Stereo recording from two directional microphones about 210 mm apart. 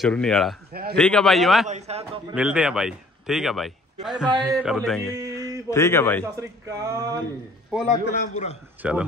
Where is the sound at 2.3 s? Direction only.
5° right (ahead or behind).